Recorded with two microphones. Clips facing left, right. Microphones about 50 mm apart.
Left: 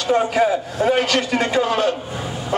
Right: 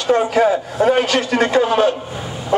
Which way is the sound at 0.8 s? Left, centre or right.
Centre.